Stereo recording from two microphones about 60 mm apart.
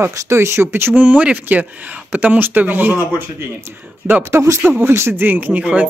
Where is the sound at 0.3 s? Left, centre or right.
Right.